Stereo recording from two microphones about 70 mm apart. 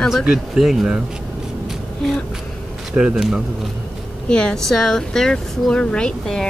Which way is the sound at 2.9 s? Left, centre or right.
Centre.